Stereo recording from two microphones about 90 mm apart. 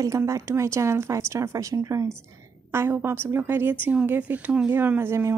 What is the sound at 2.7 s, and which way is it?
Speech, 25° right (ahead or behind).